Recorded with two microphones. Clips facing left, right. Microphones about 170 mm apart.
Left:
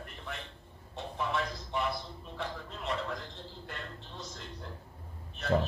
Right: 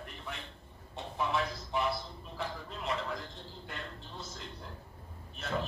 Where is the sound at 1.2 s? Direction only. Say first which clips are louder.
Right 1 dB; centre (ahead or behind).